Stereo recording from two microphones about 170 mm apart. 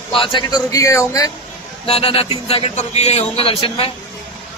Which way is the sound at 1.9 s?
35° left (ahead or behind).